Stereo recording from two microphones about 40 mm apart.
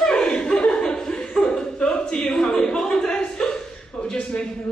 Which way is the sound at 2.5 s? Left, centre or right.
Centre.